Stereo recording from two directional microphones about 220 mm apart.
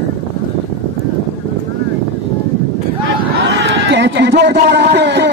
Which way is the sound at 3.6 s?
55° right (ahead or behind).